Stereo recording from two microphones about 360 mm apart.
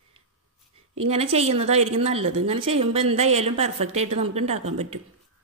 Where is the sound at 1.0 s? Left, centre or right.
Centre.